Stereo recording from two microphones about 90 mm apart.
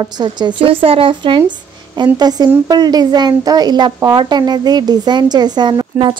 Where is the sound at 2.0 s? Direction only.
50° right (ahead or behind).